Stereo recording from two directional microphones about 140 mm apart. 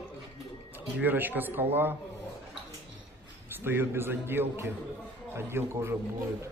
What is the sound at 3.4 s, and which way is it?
A man's voice, 15° right (ahead or behind).